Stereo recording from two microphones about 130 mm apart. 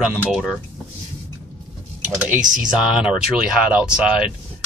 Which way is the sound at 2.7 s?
5° right (ahead or behind).